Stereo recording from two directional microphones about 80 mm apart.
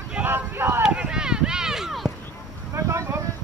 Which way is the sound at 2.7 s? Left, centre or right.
Right.